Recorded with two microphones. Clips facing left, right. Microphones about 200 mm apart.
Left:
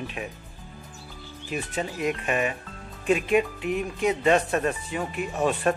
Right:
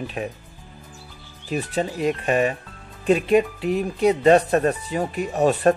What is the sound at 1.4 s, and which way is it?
Speech, 35° right (ahead or behind).